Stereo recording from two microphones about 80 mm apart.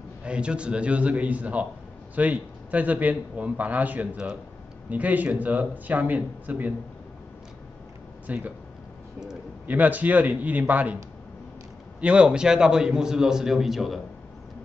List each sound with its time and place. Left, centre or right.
0.2 s a man's voice: centre
8.3 s a man's voice: centre
9.7 s a man's voice: right
12.0 s a man's voice: centre